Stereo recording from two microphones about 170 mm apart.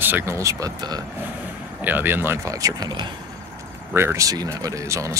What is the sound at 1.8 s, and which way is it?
Speech, 10° right (ahead or behind).